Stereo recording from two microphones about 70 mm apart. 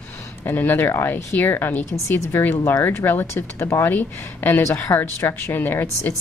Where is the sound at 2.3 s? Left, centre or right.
Left.